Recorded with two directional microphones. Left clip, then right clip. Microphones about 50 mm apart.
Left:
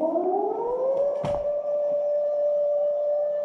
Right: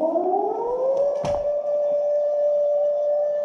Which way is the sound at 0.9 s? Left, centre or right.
Left.